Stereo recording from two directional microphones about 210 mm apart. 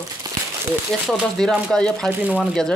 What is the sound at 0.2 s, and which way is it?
Crumpling, 20° right (ahead or behind).